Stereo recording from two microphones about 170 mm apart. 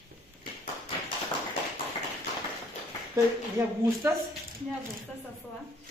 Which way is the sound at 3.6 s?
20° right (ahead or behind).